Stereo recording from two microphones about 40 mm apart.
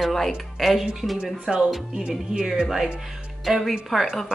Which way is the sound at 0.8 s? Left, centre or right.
Centre.